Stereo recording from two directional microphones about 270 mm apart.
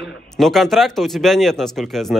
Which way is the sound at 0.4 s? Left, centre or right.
Centre.